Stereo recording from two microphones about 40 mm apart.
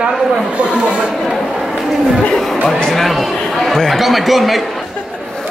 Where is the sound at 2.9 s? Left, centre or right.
Centre.